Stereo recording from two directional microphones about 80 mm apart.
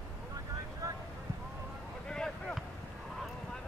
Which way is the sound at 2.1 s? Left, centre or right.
Centre.